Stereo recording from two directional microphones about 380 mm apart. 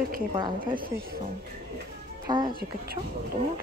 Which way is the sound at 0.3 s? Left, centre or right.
Centre.